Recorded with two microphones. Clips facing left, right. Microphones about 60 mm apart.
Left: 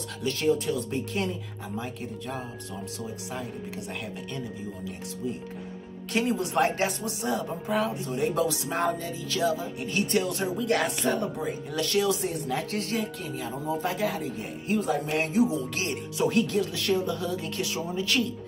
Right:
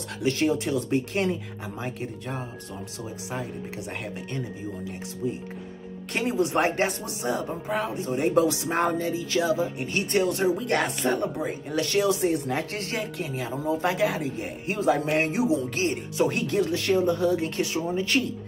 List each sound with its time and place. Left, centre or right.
0.2 s speech: right
0.7 s speech: right
6.1 s music: centre
7.1 s speech: right
7.6 s speech: centre
7.9 s speech: right
10.4 s music: centre
11.4 s speech: right
15.7 s speech: right
16.2 s speech: right
18.1 s speech: right